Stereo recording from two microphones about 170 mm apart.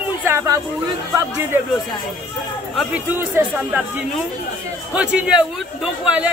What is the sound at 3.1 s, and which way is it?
Speech, 15° right (ahead or behind).